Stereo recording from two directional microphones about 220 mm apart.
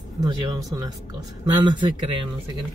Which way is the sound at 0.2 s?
15° right (ahead or behind).